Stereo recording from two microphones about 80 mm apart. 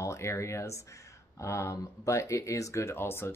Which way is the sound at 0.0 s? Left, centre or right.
Left.